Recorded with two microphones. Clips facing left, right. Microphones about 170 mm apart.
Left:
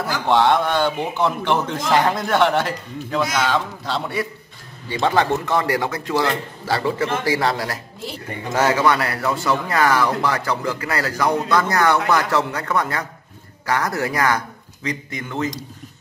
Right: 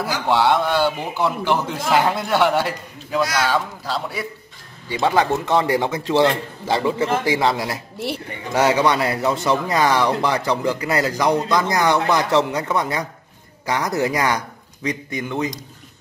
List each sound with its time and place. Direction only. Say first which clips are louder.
0.0 s a man's voice: left 1 dB; 5° right (ahead or behind)
4.8 s speech: even; 15° right (ahead or behind)